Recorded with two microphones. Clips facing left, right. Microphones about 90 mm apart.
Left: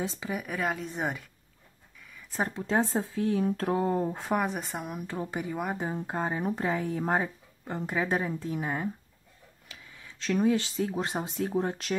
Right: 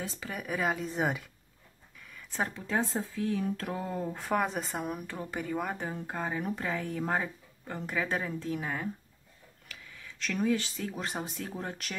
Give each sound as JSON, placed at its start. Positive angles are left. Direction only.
{"t": 0.0, "sound": "speech", "side_deg": 20}
{"t": 0.3, "sound": "a woman's voice", "side_deg": 0}
{"t": 2.0, "sound": "a sound", "side_deg": 5}
{"t": 2.7, "sound": "speech", "side_deg": 30}
{"t": 4.3, "sound": "speech", "side_deg": 10}
{"t": 4.9, "sound": "speech", "side_deg": 20}
{"t": 5.8, "sound": "speech", "side_deg": 25}